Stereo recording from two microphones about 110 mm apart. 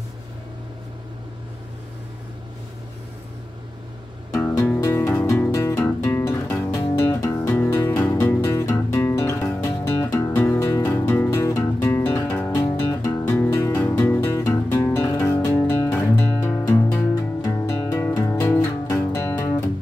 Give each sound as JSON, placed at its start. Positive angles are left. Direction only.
{"t": 4.3, "sound": "music", "side_deg": 25}
{"t": 12.5, "sound": "music", "side_deg": 30}
{"t": 17.1, "sound": "music", "side_deg": 35}